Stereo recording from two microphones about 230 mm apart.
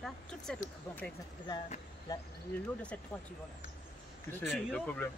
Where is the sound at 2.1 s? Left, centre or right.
Centre.